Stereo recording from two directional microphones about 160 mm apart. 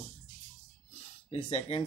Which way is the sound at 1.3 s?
40° left (ahead or behind).